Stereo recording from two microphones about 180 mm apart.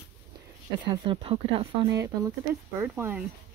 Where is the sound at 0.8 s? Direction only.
30° right (ahead or behind).